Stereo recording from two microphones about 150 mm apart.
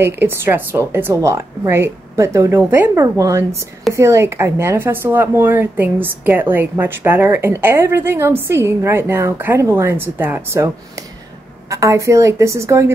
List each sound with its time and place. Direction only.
0.0 s a woman's voice: 15° right (ahead or behind)